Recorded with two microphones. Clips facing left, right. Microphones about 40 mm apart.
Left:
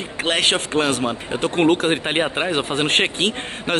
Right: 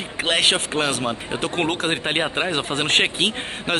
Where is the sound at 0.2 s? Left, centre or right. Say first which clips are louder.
Even; centre.